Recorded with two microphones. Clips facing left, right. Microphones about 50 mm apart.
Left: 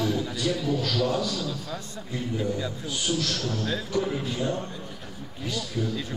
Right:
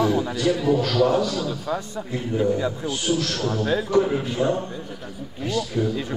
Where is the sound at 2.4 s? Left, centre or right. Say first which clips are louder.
Right 10 dB; right.